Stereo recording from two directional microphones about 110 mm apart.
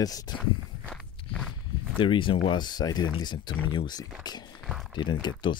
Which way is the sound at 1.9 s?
50° left (ahead or behind).